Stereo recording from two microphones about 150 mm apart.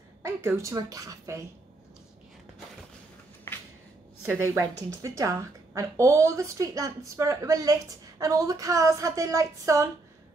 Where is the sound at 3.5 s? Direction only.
15° left (ahead or behind).